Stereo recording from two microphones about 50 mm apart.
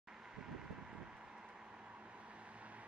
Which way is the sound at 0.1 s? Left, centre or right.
Centre.